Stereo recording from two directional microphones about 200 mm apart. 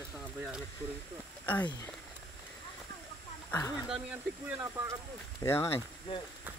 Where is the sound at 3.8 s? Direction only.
10° right (ahead or behind).